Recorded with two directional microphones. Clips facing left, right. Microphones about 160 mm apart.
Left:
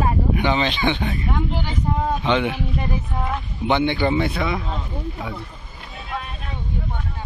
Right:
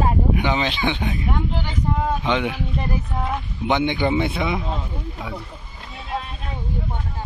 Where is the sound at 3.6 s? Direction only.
15° right (ahead or behind).